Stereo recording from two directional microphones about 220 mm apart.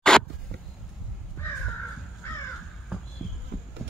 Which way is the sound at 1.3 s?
10° left (ahead or behind).